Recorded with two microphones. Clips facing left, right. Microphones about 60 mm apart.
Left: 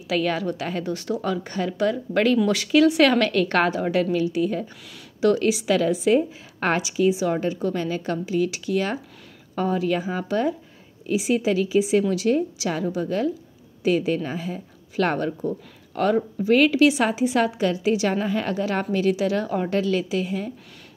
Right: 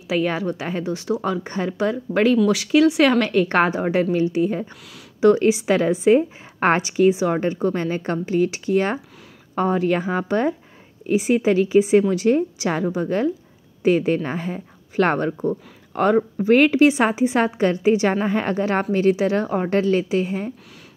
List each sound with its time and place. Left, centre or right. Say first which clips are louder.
0.1 s a woman's voice: right 2 dB; centre
2.3 s a woman's voice: right 2 dB; centre; by 20.5 s right